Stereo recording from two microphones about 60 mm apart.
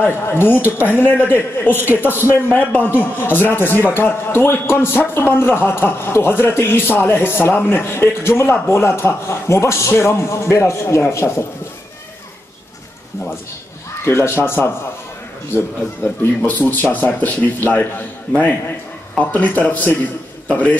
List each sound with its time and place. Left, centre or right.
0.0 s a man's voice: left
14.0 s a man's voice: left
16.2 s a man's voice: left